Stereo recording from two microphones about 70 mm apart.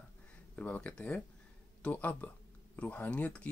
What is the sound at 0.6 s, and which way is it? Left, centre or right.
Speech, centre.